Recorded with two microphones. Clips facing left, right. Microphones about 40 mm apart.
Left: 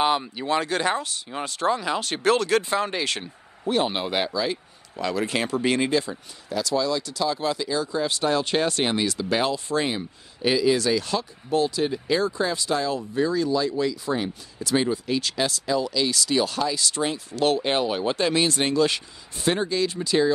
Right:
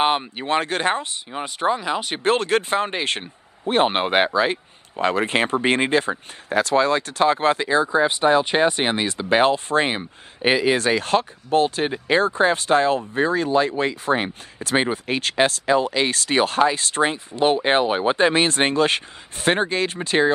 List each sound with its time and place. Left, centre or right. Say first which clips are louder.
0.0 s speech: right 2 dB; right; by 2.2 s centre
2.2 s speech: right 1 dB; right
17.3 s speech: right 2 dB; right